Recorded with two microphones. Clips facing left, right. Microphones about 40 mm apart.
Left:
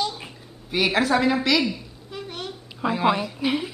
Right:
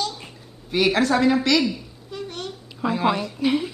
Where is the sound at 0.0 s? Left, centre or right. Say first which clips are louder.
Left 1 dB; centre.